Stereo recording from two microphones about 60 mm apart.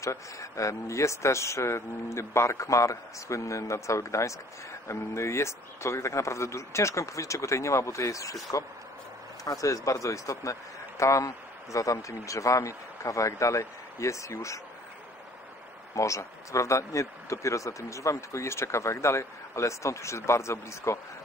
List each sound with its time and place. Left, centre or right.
0.0 s speech: left
15.9 s speech: left